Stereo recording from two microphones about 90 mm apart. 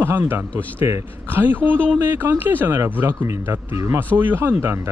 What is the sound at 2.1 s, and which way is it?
Speech, 25° right (ahead or behind).